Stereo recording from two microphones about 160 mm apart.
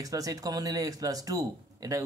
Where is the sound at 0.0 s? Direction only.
20° right (ahead or behind).